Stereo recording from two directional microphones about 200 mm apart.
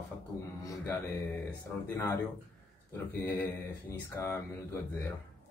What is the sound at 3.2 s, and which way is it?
Speech, 15° left (ahead or behind).